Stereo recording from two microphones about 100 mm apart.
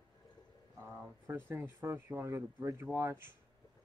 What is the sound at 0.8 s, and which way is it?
Speech, 20° right (ahead or behind).